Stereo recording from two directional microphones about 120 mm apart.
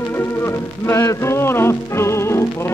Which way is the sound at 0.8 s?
25° left (ahead or behind).